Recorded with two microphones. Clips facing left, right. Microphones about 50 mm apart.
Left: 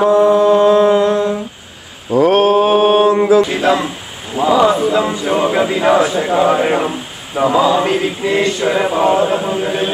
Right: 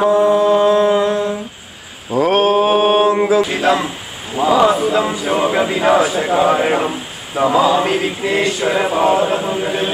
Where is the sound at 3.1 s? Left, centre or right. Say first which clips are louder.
Left 3 dB; right.